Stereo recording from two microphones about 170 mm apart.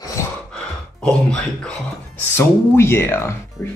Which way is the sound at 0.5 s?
5° left (ahead or behind).